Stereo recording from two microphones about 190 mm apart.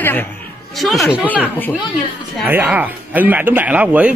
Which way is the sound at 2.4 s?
10° right (ahead or behind).